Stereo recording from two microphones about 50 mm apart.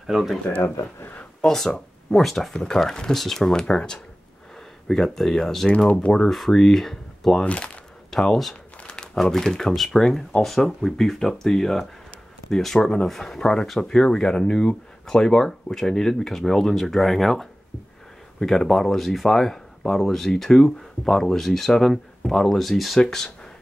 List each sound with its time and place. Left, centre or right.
0.0 s speech: centre
1.4 s speech: centre
7.4 s speech: left
8.1 s speech: centre
8.8 s crumpling: centre
9.2 s speech: centre